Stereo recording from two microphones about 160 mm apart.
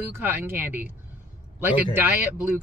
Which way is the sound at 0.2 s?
10° right (ahead or behind).